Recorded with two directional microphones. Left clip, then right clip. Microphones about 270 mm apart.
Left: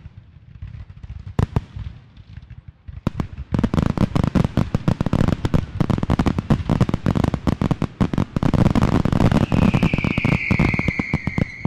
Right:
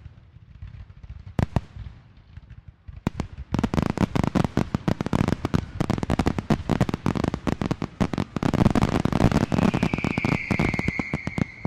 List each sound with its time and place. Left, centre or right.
1.3 s fireworks: centre
3.0 s fireworks: centre
8.1 s fireworks: centre
8.7 s a sound: centre
10.0 s music: centre